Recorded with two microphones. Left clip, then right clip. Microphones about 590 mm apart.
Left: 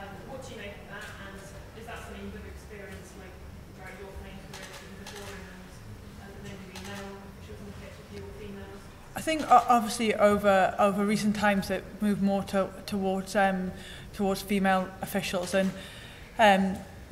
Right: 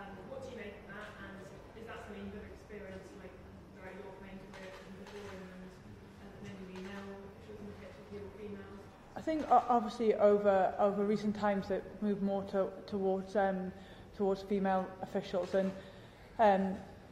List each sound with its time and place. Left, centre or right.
9.1 s a man's voice: left